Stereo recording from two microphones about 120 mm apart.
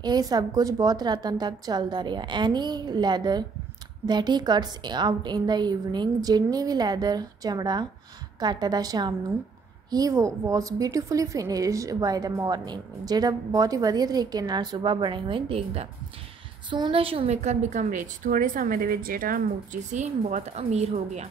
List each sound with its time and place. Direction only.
0.0 s a woman's voice: 35° right (ahead or behind); by 15.9 s 55° right (ahead or behind)
16.7 s a woman's voice: 45° right (ahead or behind); by 18.6 s 90° right
19.7 s a woman's voice: 85° right; by 21.3 s 65° right (ahead or behind)